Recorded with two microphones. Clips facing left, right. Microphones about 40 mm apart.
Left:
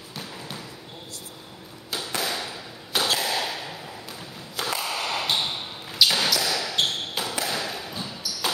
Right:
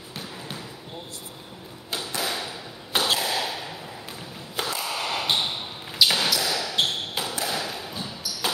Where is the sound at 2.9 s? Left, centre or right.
Right.